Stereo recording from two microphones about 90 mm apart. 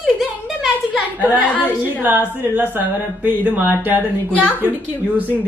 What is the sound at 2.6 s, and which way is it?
Speech, 20° right (ahead or behind).